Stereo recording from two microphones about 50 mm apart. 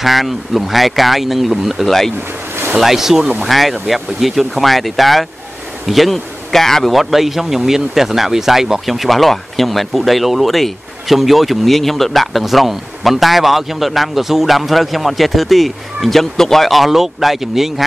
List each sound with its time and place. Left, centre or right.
0.0 s speech: centre